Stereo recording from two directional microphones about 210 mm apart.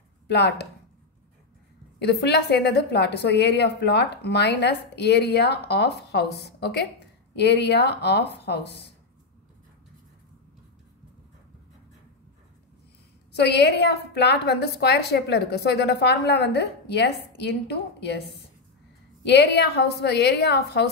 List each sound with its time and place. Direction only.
0.3 s a woman's voice: 55° left (ahead or behind)
2.0 s a woman's voice: 55° left (ahead or behind)
13.3 s a woman's voice: 50° left (ahead or behind)
19.2 s a woman's voice: 55° left (ahead or behind)